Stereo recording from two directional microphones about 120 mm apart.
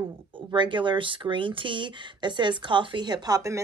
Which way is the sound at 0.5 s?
40° right (ahead or behind).